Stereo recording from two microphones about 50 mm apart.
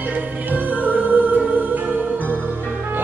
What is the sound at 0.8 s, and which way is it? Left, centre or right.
Music, right.